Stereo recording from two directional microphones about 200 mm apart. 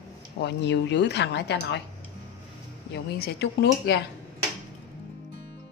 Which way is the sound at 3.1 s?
55° left (ahead or behind).